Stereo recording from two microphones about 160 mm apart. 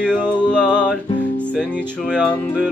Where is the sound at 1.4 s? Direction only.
5° left (ahead or behind).